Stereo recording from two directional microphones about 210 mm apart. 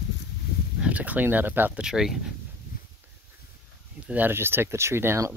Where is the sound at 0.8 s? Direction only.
5° right (ahead or behind).